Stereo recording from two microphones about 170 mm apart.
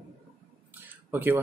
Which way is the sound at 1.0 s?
10° right (ahead or behind).